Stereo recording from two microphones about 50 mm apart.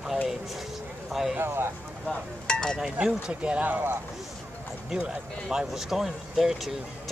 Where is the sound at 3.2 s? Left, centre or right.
Right.